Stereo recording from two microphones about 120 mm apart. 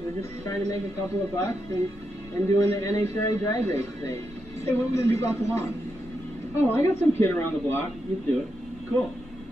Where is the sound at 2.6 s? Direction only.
25° left (ahead or behind).